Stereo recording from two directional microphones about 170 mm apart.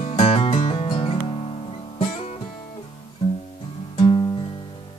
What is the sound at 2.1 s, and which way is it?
Music, 40° left (ahead or behind).